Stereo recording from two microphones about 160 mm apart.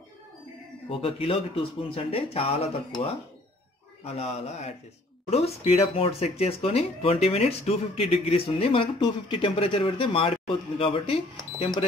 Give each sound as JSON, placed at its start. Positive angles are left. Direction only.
{"t": 0.8, "sound": "speech", "side_deg": 35}
{"t": 4.0, "sound": "speech", "side_deg": 40}